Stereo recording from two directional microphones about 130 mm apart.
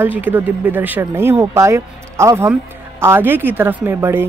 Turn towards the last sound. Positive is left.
turn(degrees=-20)  # may be behind; listen again after turning